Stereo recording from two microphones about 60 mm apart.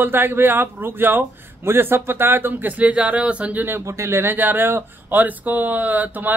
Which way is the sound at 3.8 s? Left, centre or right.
Right.